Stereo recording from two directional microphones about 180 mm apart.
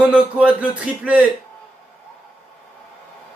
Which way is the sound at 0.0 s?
5° right (ahead or behind).